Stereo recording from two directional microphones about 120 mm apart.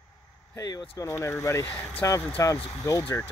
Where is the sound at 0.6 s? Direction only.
30° left (ahead or behind).